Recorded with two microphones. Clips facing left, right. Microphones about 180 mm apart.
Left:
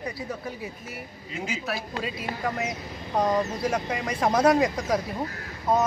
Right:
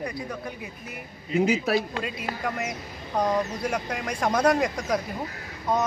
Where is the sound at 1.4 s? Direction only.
70° right (ahead or behind).